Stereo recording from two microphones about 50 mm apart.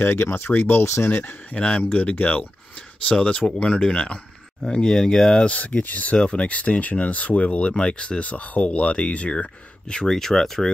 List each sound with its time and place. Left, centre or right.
0.0 s speech: left
0.5 s speech: left
0.8 s speech: left
1.5 s speech: left; by 5.4 s centre
5.4 s speech: left
6.1 s speech: left